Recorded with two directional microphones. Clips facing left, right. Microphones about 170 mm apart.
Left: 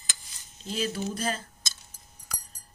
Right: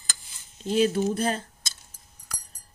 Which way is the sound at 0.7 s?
55° right (ahead or behind).